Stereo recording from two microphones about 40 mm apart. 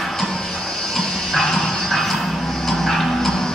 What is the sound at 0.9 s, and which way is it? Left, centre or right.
Dog, centre.